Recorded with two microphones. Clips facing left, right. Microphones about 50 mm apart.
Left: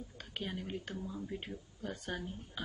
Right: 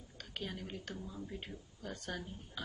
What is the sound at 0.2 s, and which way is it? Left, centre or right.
Speech, centre.